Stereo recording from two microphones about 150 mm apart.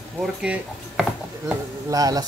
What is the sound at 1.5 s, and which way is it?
Speech, 25° right (ahead or behind).